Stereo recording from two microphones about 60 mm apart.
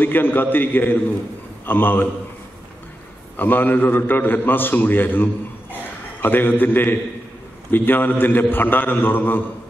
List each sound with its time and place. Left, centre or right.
0.0 s a man's voice: left
3.3 s a man's voice: left